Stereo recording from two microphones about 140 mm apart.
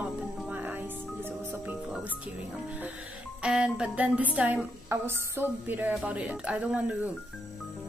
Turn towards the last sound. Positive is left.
turn(degrees=-10)  # may be behind; listen again after turning